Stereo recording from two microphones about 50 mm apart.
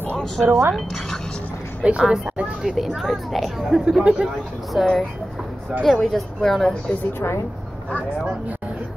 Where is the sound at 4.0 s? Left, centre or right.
Right.